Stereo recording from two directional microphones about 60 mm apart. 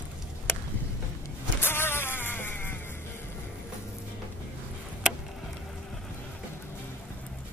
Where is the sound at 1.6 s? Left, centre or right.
Left.